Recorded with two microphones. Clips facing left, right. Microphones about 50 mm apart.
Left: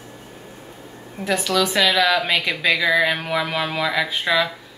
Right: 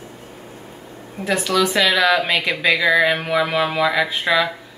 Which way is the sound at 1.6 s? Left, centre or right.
Centre.